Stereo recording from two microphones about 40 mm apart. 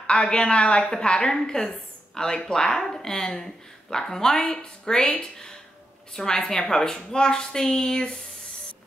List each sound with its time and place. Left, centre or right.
0.0 s a woman's voice: left